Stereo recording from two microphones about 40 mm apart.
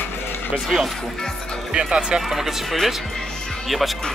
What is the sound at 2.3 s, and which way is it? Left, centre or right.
Speech, centre.